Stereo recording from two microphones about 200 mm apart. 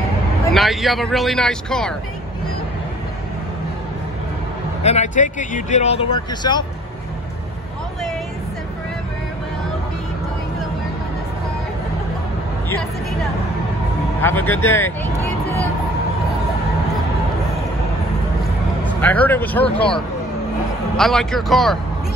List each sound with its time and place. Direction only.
0.5 s speech: centre (ahead or behind)
4.8 s speech: 35° left (ahead or behind)
14.2 s speech: 10° left (ahead or behind)
18.9 s speech: 10° left (ahead or behind)
20.9 s speech: centre (ahead or behind)